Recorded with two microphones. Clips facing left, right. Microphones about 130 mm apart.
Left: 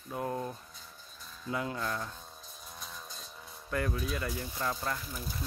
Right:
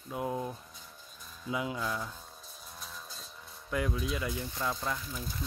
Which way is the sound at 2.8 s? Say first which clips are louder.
Even; centre (ahead or behind).